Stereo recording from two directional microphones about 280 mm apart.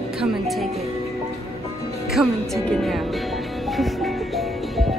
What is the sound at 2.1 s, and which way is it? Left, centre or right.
Music, centre.